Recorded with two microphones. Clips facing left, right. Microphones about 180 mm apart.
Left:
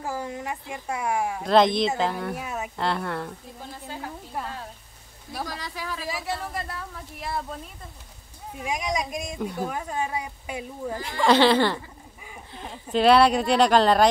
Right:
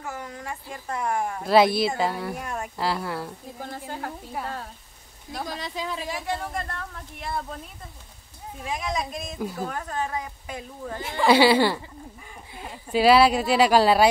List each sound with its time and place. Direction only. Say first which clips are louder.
0.0 s speech: left 4 dB; 30° left (ahead or behind); by 1.4 s 10° left (ahead or behind)
1.4 s speech: right 1 dB; 5° right (ahead or behind)
3.7 s a woman's voice: right 2 dB; 60° right (ahead or behind)
5.4 s speech: right 2 dB; 20° right (ahead or behind)
6.0 s speech: right 1 dB; centre (ahead or behind)
8.5 s a woman's voice: left 1 dB; 15° left (ahead or behind)
11.1 s speech: right 1 dB; 5° right (ahead or behind)